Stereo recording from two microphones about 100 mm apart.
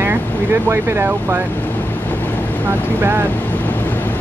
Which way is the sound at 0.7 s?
25° right (ahead or behind).